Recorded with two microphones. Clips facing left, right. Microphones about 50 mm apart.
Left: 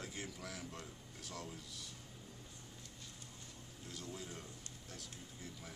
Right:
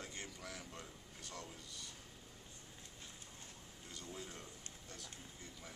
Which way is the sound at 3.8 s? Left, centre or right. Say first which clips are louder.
Left 2 dB; centre.